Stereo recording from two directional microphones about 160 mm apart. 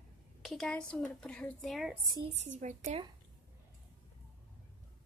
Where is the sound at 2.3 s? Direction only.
45° right (ahead or behind).